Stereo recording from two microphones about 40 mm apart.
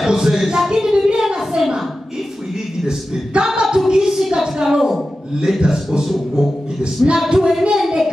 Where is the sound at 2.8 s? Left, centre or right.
Centre.